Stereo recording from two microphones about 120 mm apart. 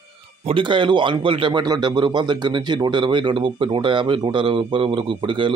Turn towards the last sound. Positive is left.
turn(degrees=-45)  # may be behind; listen again after turning